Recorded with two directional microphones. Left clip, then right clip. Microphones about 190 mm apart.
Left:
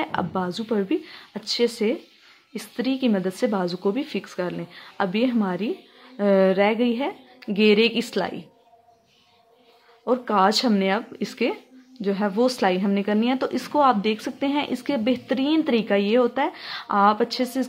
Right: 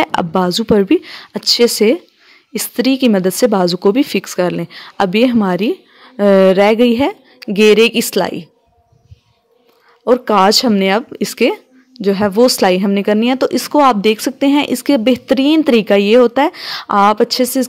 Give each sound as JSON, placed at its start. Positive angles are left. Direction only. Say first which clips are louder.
{"t": 0.0, "sound": "speech", "louder": "right 11 dB", "side_deg": -50}
{"t": 10.0, "sound": "speech", "louder": "right 9 dB", "side_deg": -45}